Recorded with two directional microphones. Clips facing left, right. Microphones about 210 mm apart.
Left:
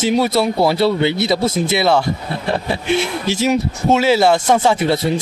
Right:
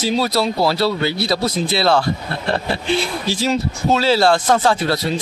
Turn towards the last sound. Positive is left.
turn(degrees=20)  # may be behind; listen again after turning